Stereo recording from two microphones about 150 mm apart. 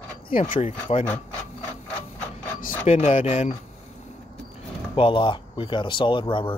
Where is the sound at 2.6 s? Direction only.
55° left (ahead or behind).